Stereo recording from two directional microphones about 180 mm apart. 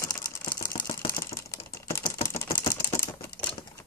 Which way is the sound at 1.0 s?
20° left (ahead or behind).